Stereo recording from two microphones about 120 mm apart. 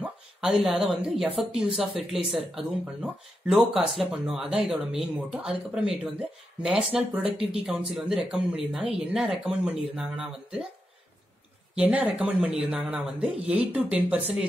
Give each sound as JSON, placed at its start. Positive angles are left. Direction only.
{"t": 0.0, "sound": "a sound", "side_deg": -5}
{"t": 1.0, "sound": "speech", "side_deg": -5}
{"t": 7.2, "sound": "speech", "side_deg": -50}
{"t": 7.6, "sound": "speech", "side_deg": -5}
{"t": 11.7, "sound": "speech", "side_deg": -10}